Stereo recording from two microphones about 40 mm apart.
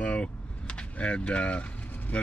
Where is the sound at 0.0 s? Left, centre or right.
Left.